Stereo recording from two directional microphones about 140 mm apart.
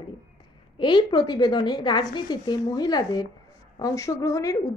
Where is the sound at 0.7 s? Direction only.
35° left (ahead or behind).